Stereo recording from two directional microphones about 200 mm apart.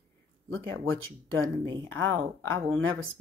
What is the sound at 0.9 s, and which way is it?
Speech, 85° right.